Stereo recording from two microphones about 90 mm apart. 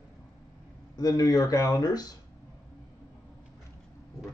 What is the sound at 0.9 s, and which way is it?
Speech, 45° left (ahead or behind).